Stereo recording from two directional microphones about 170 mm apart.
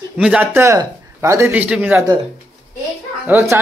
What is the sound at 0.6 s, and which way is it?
Speech, 20° right (ahead or behind).